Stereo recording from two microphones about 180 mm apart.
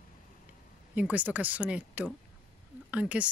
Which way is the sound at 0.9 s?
10° right (ahead or behind).